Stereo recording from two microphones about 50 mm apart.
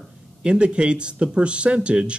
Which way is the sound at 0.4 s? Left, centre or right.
Right.